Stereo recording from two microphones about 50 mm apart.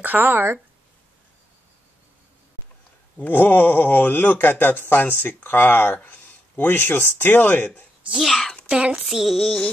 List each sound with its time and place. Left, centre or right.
0.0 s speech: right
3.2 s speech: left
5.9 s speech: left
8.2 s female singing: centre
8.6 s a sound: right
9.0 s female singing: centre